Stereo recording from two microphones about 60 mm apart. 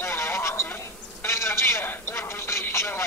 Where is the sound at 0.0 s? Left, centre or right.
Left.